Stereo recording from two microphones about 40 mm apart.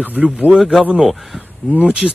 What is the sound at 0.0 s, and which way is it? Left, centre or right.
Speech, right.